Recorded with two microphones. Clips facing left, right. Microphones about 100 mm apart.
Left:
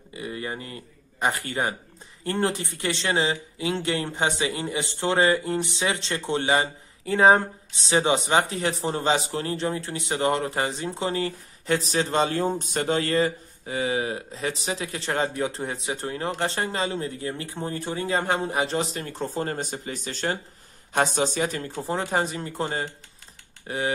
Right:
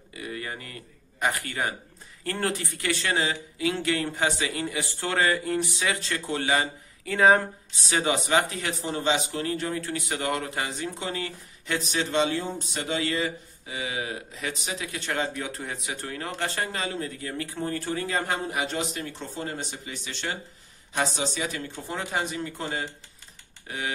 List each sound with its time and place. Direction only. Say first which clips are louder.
0.1 s a man's voice: left 3 dB; 25° left (ahead or behind)